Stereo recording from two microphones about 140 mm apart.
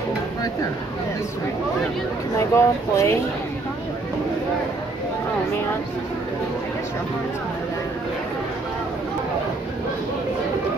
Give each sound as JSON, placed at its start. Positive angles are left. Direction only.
{"t": 2.3, "sound": "speech", "side_deg": 20}